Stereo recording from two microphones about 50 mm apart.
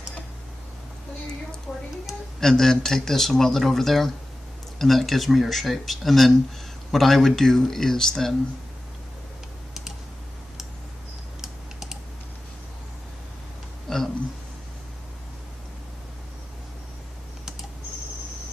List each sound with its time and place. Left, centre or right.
1.7 s speech: left
2.4 s speech: centre
11.4 s typing: centre
13.8 s a sound: centre